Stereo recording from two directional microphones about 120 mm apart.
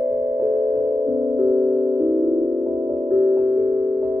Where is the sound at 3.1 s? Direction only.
35° right (ahead or behind).